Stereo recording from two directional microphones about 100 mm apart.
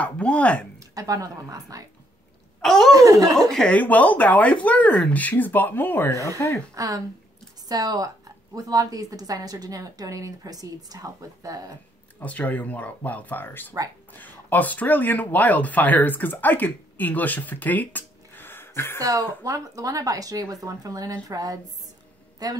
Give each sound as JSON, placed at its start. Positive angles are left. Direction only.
{"t": 0.0, "sound": "speech", "side_deg": 10}
{"t": 0.7, "sound": "a woman's voice", "side_deg": -35}
{"t": 2.6, "sound": "speech", "side_deg": 5}
{"t": 2.9, "sound": "a woman's voice", "side_deg": -35}
{"t": 3.3, "sound": "speech", "side_deg": 5}
{"t": 6.1, "sound": "a woman's voice", "side_deg": -35}
{"t": 12.2, "sound": "speech", "side_deg": 15}
{"t": 18.9, "sound": "a woman's voice", "side_deg": -35}